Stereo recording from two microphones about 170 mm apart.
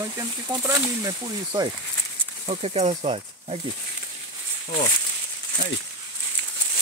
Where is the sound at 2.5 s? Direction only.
35° right (ahead or behind).